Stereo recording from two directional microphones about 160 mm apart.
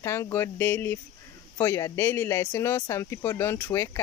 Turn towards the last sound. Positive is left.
turn(degrees=20)  # may be behind; listen again after turning